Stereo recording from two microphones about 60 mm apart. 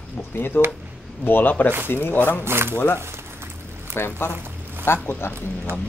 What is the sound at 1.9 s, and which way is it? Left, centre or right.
Speech, left.